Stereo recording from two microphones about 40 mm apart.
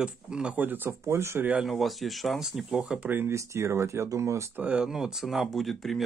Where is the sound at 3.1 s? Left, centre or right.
Right.